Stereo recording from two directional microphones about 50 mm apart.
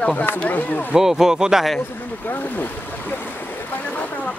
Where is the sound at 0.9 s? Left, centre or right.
Centre.